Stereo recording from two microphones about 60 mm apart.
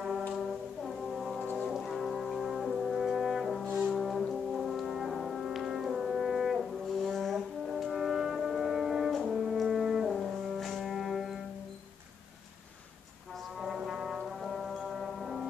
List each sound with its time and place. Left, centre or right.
0.8 s brass instrument: centre
1.4 s brass instrument: left
1.7 s brass instrument: centre
13.6 s brass instrument: centre